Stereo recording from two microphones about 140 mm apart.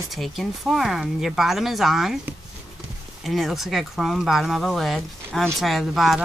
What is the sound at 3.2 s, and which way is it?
Speech, centre (ahead or behind).